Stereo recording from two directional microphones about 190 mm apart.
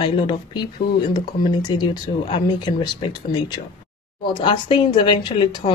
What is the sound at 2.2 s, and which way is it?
A woman's voice, 25° left (ahead or behind).